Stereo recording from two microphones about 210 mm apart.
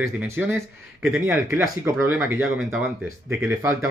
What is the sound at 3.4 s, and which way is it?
Speech, 10° right (ahead or behind).